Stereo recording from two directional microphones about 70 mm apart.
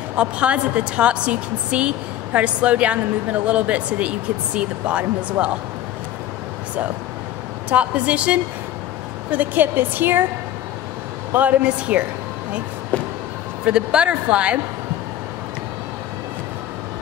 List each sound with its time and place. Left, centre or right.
0.1 s a woman's voice: centre
7.7 s a woman's voice: centre
11.3 s a woman's voice: right
12.9 s a sound: centre
13.7 s a woman's voice: centre